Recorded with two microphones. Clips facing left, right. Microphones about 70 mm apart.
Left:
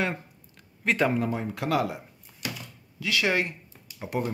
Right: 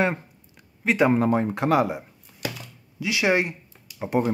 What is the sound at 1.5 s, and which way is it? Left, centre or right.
Speech, right.